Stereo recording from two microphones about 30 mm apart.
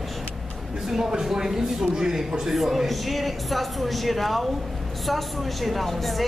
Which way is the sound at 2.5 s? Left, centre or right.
Centre.